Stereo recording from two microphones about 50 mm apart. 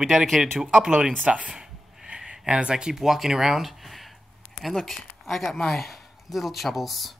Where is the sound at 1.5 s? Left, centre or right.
Centre.